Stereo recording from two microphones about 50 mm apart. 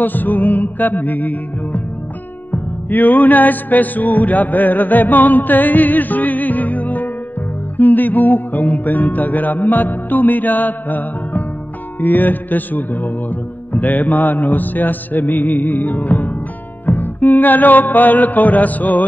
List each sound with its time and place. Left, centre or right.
0.0 s music: left